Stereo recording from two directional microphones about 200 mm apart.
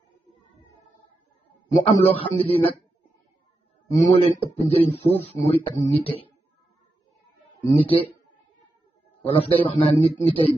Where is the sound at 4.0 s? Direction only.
30° left (ahead or behind).